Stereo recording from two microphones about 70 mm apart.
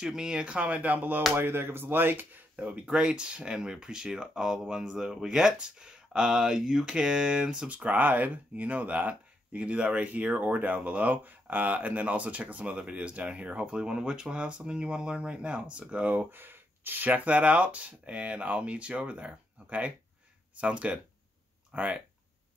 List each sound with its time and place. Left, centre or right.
0.0 s speech: centre